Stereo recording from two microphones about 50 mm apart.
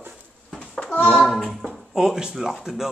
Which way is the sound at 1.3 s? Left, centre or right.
Centre.